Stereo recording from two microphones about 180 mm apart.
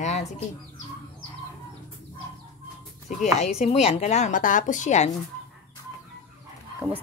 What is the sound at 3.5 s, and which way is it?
A woman's voice, 35° left (ahead or behind).